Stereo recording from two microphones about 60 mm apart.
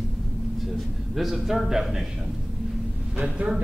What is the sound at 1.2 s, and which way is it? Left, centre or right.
Speech, centre.